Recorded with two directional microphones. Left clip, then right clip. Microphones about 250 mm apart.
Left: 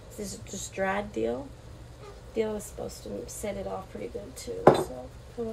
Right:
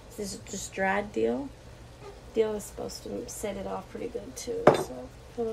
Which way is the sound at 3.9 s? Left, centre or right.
Centre.